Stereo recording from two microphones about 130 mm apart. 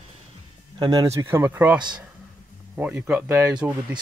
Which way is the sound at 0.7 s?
30° right (ahead or behind).